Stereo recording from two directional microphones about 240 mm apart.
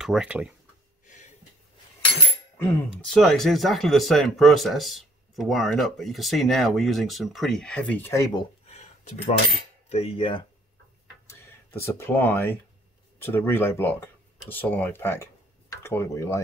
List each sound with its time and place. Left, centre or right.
0.0 s speech: centre
2.9 s speech: centre; by 9.3 s left
9.8 s cutlery: left
11.2 s speech: centre